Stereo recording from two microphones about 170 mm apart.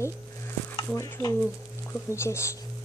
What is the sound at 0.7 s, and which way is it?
Stir, 20° left (ahead or behind).